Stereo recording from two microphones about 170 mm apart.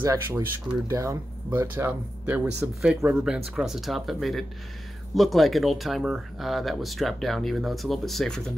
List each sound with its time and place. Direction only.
0.0 s speech: 15° right (ahead or behind); by 8.5 s centre (ahead or behind)